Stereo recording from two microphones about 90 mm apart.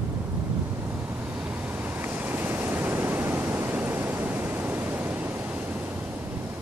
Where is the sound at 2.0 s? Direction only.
20° right (ahead or behind).